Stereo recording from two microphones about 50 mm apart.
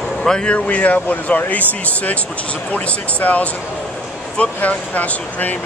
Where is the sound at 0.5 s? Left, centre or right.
Left.